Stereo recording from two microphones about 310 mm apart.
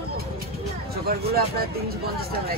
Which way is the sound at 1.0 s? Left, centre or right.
Right.